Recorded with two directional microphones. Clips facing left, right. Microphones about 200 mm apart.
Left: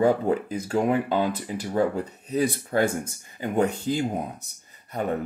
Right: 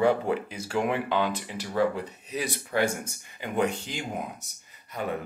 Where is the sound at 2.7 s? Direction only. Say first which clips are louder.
Even; 40° left (ahead or behind).